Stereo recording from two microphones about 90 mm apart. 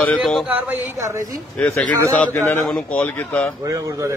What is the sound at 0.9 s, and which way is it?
Speech, 35° right (ahead or behind).